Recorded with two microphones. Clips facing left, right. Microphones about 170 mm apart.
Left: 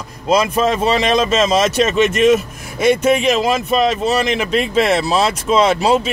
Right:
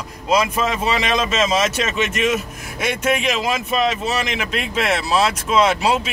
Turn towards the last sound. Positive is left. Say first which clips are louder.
# left 3 dB
turn(degrees=30)  # may be behind; listen again after turning